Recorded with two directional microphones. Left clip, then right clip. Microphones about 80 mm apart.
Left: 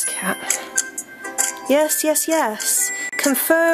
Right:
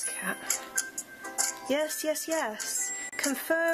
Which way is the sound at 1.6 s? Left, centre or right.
Left.